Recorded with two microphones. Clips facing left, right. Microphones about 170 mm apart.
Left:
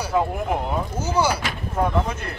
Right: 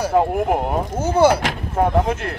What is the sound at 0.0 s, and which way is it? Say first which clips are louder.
Speech: right 5 dB; 50° right (ahead or behind).